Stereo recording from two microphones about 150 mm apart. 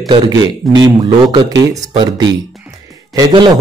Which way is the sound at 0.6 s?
Centre (ahead or behind).